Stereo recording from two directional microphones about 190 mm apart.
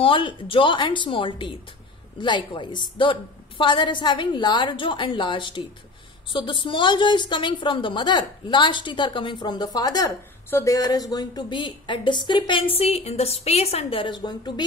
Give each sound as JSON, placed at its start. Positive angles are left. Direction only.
{"t": 0.0, "sound": "a woman's voice", "side_deg": 25}